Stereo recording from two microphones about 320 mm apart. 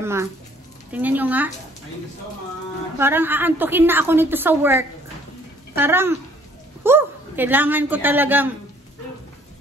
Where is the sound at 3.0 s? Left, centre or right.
Centre.